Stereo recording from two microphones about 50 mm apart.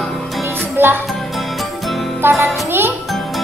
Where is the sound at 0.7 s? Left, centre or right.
Right.